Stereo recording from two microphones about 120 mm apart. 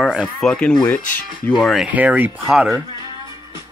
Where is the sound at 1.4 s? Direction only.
Centre (ahead or behind).